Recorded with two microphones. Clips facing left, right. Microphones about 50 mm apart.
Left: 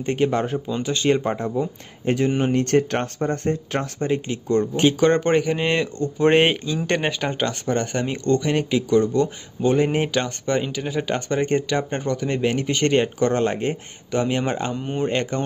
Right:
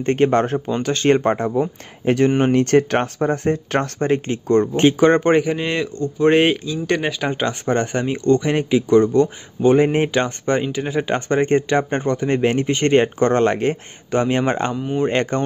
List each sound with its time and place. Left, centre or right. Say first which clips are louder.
0.0 s speech: right 5 dB; right
1.2 s speech: right 5 dB; right
4.0 s speech: right 4 dB; right
4.8 s speech: right 3 dB; right
5.6 s speech: even; centre
7.2 s speech: right 3 dB; centre
7.6 s speech: right 5 dB; right
7.9 s speech: right 4 dB; centre
8.9 s speech: right 4 dB; right